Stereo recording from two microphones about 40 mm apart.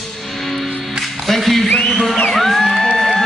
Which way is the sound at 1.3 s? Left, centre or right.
Centre.